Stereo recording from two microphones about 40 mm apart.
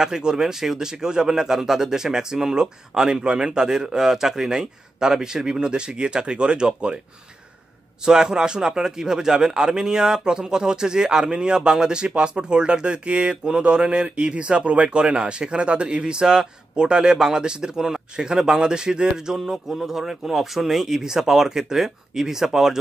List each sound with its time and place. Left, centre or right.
0.0 s speech: centre
8.0 s a man's voice: centre